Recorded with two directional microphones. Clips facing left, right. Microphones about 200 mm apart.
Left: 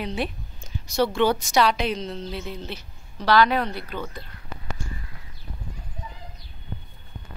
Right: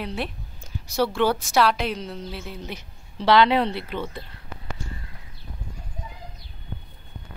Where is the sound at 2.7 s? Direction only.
25° right (ahead or behind).